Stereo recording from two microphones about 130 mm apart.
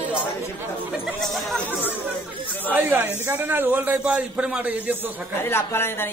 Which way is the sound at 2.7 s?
15° right (ahead or behind).